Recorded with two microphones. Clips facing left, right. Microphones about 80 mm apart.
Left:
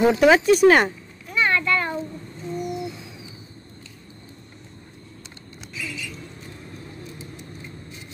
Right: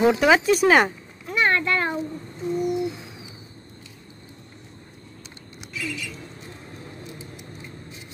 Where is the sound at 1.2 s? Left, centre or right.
Right.